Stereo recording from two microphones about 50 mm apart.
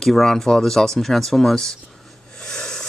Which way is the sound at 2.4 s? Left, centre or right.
Centre.